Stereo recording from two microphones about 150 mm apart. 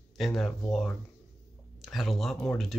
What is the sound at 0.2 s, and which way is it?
Speech, centre (ahead or behind).